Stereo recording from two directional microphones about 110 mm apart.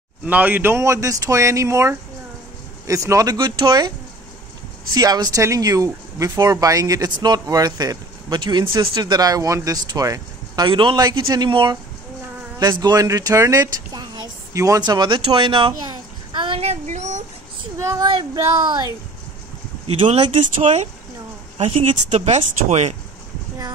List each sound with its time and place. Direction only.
0.2 s speech: 15° right (ahead or behind); by 3.9 s 45° right (ahead or behind)
4.9 s speech: 35° right (ahead or behind)
10.7 s a man's voice: 50° right (ahead or behind)
14.5 s a sound: 30° right (ahead or behind); by 17.2 s 90° right
17.7 s a sound: 25° right (ahead or behind)
18.3 s speech: 40° right (ahead or behind)
20.6 s speech: 90° right
21.5 s speech: 65° right (ahead or behind); by 22.9 s 90° right